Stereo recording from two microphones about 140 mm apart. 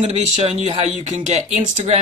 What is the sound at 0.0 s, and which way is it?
Speech, 50° right (ahead or behind).